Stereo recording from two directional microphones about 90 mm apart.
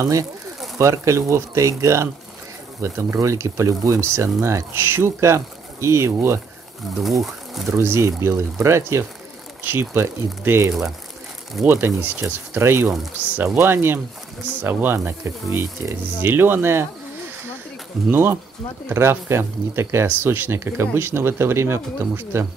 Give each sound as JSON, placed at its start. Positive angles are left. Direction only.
{"t": 0.7, "sound": "speech", "side_deg": -35}
{"t": 7.0, "sound": "speech", "side_deg": 0}
{"t": 7.7, "sound": "speech", "side_deg": -30}
{"t": 18.1, "sound": "speech", "side_deg": -25}